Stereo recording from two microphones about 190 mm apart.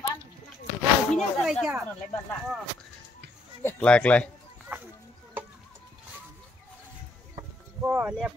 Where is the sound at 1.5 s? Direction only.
Centre (ahead or behind).